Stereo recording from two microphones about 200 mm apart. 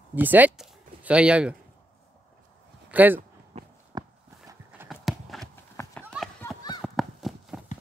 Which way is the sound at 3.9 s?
20° right (ahead or behind).